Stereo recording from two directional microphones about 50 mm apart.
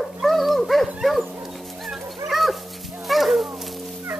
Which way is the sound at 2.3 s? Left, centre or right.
Centre.